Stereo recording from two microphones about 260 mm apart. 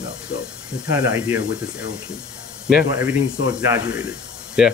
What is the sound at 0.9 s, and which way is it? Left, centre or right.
Speech, centre.